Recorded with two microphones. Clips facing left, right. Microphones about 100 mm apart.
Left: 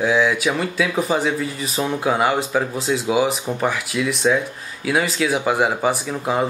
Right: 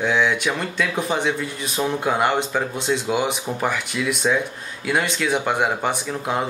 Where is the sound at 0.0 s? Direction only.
5° left (ahead or behind).